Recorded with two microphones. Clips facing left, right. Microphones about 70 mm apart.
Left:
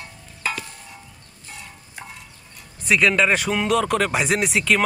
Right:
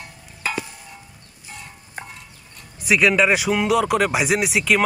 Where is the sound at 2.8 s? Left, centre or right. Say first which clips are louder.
Right 1 dB; centre.